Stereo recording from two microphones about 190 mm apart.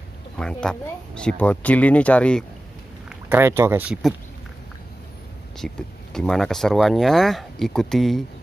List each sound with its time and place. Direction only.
0.4 s speech: 5° left (ahead or behind)
3.1 s speech: 10° right (ahead or behind)
5.6 s speech: 5° left (ahead or behind)